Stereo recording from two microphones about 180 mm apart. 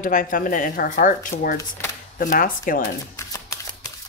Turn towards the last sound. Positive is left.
turn(degrees=15)  # may be behind; listen again after turning